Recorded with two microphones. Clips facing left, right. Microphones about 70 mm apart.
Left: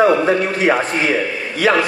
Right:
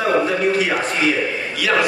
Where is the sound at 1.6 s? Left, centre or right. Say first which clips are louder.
Left 5 dB; left.